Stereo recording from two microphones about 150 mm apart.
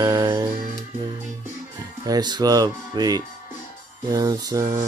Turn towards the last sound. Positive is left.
turn(degrees=-25)  # may be behind; listen again after turning